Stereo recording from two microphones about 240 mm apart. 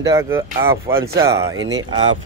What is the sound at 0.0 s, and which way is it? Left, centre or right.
Speech, centre.